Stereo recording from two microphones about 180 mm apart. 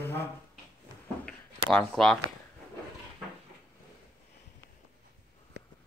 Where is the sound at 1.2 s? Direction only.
Centre (ahead or behind).